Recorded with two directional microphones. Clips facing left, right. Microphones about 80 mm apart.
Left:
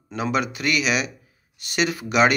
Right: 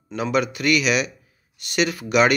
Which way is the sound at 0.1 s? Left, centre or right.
Left.